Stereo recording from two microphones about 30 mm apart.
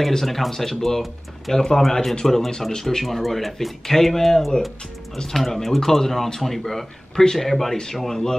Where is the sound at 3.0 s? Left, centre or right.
Centre.